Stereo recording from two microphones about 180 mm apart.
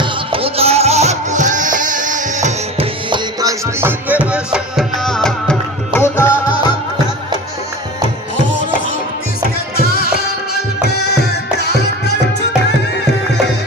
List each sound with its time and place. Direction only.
0.0 s music: 30° right (ahead or behind)
2.8 s music: 25° right (ahead or behind); by 6.3 s 10° left (ahead or behind)
9.8 s music: 60° left (ahead or behind)